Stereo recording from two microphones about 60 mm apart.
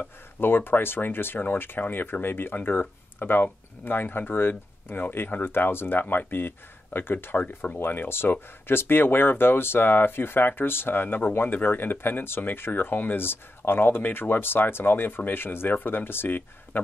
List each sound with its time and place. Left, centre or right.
0.4 s speech: left